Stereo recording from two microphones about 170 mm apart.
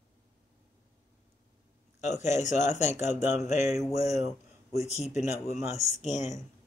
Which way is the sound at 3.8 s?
20° right (ahead or behind).